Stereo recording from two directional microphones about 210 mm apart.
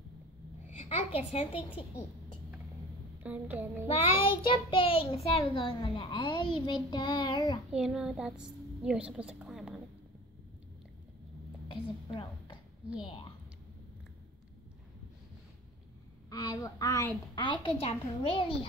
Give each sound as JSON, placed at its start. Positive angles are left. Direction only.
{"t": 0.7, "sound": "a child's voice", "side_deg": 30}
{"t": 3.2, "sound": "a sound", "side_deg": -10}
{"t": 3.8, "sound": "a woman's voice", "side_deg": 25}
{"t": 7.7, "sound": "a woman's voice", "side_deg": -5}
{"t": 11.7, "sound": "a woman's voice", "side_deg": 25}
{"t": 16.3, "sound": "a woman's voice", "side_deg": 15}